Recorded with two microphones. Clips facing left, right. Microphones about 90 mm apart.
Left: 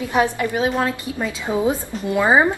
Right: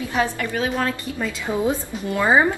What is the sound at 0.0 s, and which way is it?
A woman's voice, 20° left (ahead or behind).